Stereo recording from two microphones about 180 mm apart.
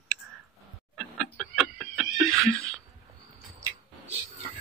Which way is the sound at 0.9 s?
Centre (ahead or behind).